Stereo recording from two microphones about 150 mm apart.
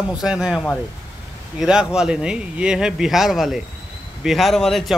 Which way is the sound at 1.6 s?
5° right (ahead or behind).